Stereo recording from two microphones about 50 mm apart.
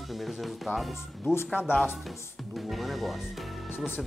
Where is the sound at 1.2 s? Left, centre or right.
Left.